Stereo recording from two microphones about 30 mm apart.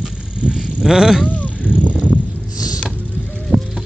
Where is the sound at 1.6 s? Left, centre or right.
Right.